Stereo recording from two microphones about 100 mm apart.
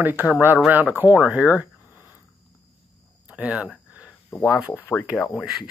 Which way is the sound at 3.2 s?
10° right (ahead or behind).